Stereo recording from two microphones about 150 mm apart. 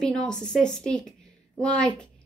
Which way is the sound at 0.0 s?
5° left (ahead or behind).